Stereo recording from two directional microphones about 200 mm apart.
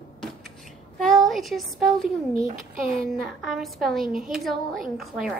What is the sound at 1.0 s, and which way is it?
Speech, centre (ahead or behind).